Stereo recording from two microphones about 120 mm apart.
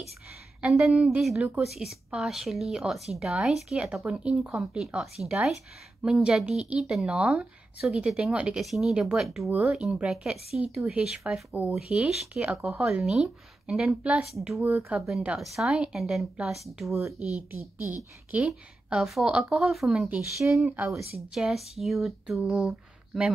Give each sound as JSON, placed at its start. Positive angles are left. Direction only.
{"t": 0.6, "sound": "a woman's voice", "side_deg": -5}
{"t": 14.6, "sound": "speech", "side_deg": -15}
{"t": 17.5, "sound": "a woman's voice", "side_deg": -20}
{"t": 20.3, "sound": "speech", "side_deg": -25}
{"t": 20.6, "sound": "a woman's voice", "side_deg": -10}